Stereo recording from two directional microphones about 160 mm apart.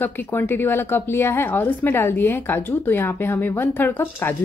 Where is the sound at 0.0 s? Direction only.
15° left (ahead or behind).